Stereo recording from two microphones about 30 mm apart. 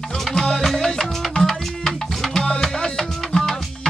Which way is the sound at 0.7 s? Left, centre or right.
Centre.